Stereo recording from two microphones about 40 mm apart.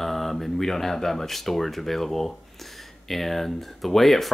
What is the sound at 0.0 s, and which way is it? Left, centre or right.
Speech, centre.